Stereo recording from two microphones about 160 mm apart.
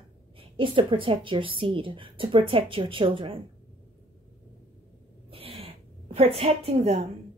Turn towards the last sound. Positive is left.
turn(degrees=-40)  # may be behind; listen again after turning